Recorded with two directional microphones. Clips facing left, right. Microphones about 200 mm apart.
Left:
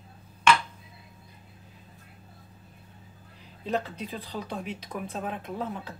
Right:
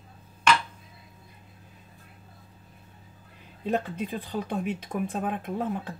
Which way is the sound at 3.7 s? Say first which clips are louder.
Right 3 dB; 50° right (ahead or behind).